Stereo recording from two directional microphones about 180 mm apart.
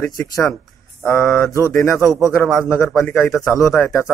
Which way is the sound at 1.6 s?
15° left (ahead or behind).